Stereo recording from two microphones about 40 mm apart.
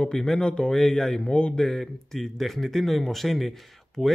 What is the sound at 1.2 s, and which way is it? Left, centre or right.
Speech, left.